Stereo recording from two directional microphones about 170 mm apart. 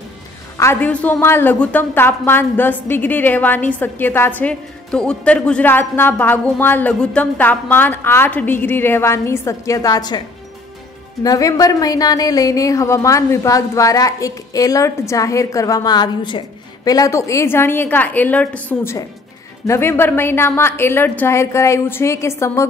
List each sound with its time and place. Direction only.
0.6 s a woman's voice: 15° left (ahead or behind)
11.2 s a woman's voice: 20° left (ahead or behind)